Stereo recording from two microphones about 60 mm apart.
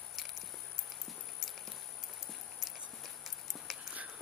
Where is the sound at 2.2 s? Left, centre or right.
Centre.